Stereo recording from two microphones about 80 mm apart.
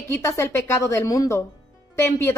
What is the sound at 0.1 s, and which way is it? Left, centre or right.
A woman's voice, left.